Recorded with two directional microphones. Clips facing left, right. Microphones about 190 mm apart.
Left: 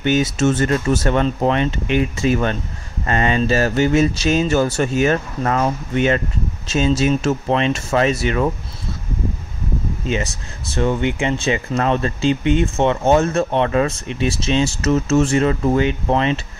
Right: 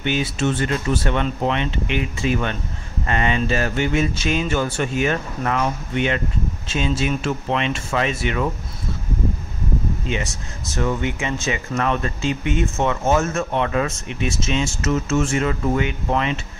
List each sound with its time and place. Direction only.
0.0 s speech: 45° left (ahead or behind)
10.0 s speech: 35° left (ahead or behind)